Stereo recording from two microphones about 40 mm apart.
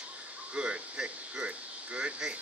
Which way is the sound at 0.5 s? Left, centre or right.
Right.